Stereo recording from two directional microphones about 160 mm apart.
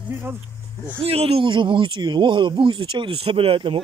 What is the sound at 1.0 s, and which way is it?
Speech, 40° right (ahead or behind).